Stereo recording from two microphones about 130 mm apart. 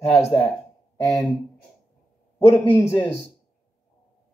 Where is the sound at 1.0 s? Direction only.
20° left (ahead or behind).